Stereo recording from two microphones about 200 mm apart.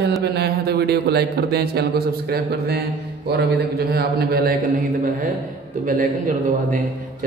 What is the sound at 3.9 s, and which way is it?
Speech, 50° right (ahead or behind).